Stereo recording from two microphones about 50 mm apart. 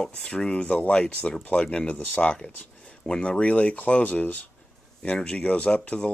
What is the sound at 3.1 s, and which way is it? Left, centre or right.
Speech, centre.